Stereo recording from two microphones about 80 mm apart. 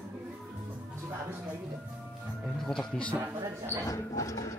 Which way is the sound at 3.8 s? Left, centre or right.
Left.